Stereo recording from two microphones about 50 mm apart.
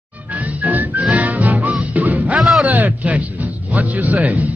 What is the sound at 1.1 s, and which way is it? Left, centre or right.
Music, right.